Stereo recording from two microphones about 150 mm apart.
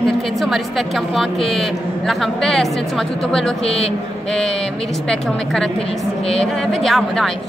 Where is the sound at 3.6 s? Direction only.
40° left (ahead or behind).